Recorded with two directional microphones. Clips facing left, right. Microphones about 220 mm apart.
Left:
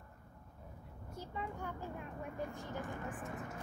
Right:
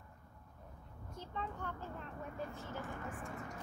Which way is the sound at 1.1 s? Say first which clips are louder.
Left 1 dB; 10° left (ahead or behind).